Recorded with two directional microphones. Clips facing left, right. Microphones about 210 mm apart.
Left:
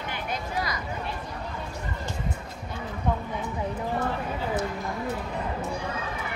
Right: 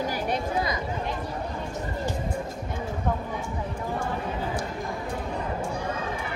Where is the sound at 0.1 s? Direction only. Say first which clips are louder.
Right 5 dB; 30° right (ahead or behind).